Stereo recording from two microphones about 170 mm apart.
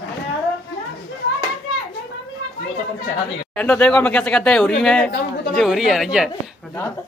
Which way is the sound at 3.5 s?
5° left (ahead or behind).